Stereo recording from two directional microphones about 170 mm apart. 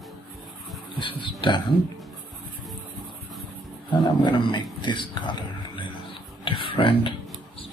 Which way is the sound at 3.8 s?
25° left (ahead or behind).